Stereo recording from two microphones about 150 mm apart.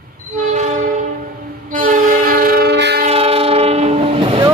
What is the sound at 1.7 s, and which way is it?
Train, 65° right (ahead or behind).